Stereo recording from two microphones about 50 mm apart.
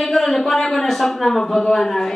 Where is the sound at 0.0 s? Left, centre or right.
Centre.